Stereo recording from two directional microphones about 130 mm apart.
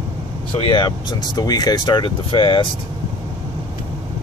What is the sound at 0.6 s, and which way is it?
Speech, 35° left (ahead or behind).